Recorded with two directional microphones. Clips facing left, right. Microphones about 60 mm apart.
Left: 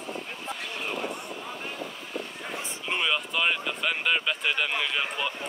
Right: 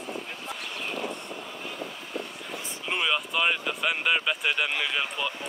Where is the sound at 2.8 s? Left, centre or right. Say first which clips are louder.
Right 1 dB; centre.